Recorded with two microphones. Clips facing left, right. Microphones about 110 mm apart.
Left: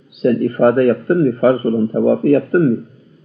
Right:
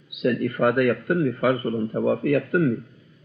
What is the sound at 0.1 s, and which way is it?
A man's voice, 35° left (ahead or behind).